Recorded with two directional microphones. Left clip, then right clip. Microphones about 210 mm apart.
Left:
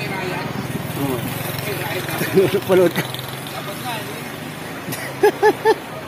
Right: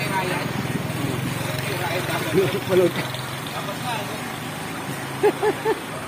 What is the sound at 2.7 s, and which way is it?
Speech, 50° left (ahead or behind).